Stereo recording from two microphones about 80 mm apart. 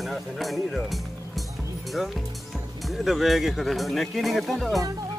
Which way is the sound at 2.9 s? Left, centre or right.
Centre.